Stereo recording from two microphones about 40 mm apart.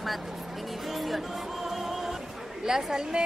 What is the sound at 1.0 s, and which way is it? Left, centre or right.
Speech, centre.